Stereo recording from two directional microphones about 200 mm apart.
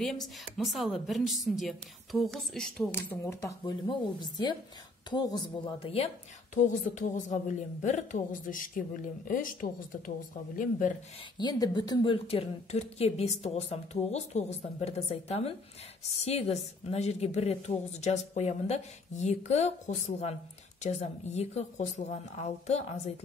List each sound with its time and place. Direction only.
0.0 s a woman's voice: centre (ahead or behind); by 6.0 s 25° left (ahead or behind)
6.5 s speech: 40° left (ahead or behind)
11.3 s speech: 20° left (ahead or behind)